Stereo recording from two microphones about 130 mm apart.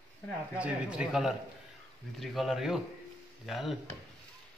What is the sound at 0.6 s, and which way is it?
Speech, 10° right (ahead or behind).